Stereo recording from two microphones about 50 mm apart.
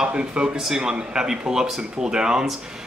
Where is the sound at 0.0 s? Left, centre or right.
Right.